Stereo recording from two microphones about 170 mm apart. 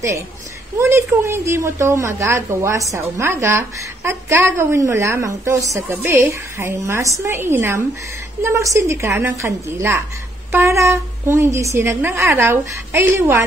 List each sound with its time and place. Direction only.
0.7 s a woman's voice: 15° right (ahead or behind)